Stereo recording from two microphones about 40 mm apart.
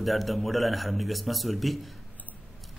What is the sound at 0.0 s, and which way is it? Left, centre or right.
Speech, centre.